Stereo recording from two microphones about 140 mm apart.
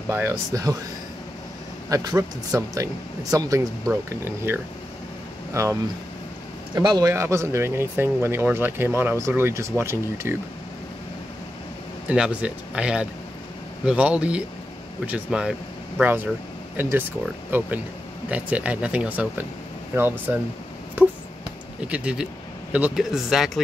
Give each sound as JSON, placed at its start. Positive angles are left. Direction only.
{"t": 0.1, "sound": "speech", "side_deg": -20}
{"t": 1.9, "sound": "speech", "side_deg": -25}
{"t": 12.1, "sound": "speech", "side_deg": -10}
{"t": 17.5, "sound": "speech", "side_deg": -15}
{"t": 21.0, "sound": "a sound", "side_deg": -15}
{"t": 21.8, "sound": "speech", "side_deg": -10}